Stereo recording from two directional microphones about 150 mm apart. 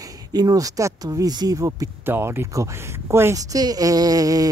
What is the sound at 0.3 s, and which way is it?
Speech, 25° right (ahead or behind).